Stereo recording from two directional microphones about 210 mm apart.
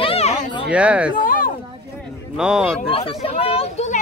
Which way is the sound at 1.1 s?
40° left (ahead or behind).